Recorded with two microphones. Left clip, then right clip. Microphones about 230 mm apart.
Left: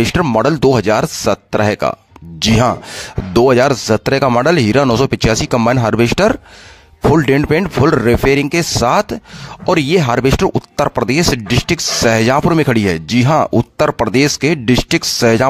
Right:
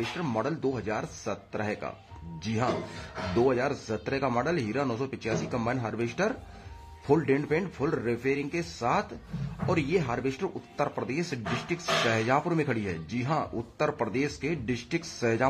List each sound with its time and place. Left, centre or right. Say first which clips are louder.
0.2 s speech: left 19 dB; left
3.3 s speech: left 17 dB; left